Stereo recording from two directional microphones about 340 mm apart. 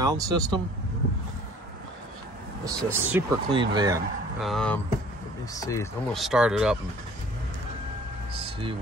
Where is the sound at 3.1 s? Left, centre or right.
Centre.